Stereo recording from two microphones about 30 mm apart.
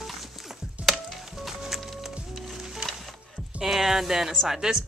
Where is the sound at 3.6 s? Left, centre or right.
Centre.